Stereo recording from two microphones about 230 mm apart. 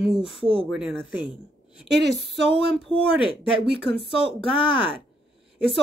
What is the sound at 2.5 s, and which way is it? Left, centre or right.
A woman's voice, left.